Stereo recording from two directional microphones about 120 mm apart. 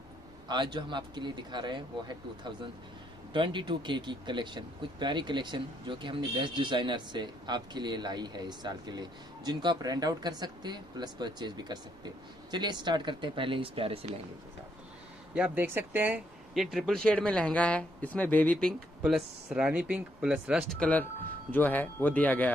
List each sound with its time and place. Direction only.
0.5 s speech: 40° right (ahead or behind)
15.3 s speech: 10° right (ahead or behind)
16.5 s speech: centre (ahead or behind)
20.8 s speech: 15° left (ahead or behind)